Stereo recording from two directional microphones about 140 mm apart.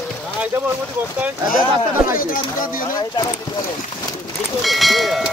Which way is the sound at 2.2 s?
80° left.